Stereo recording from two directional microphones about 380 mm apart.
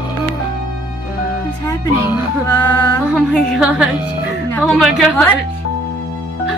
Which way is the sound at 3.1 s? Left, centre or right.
Centre.